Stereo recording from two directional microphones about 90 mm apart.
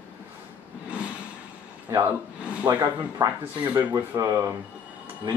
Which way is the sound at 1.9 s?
35° right (ahead or behind).